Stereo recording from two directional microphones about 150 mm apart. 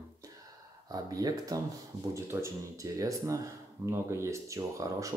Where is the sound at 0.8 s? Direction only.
25° right (ahead or behind).